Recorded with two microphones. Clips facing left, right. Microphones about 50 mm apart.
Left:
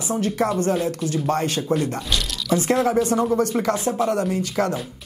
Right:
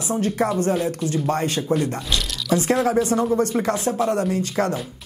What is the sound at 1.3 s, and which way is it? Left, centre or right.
Speech, right.